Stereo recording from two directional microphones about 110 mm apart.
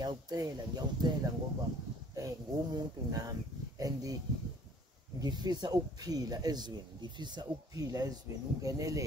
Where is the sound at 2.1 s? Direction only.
35° right (ahead or behind).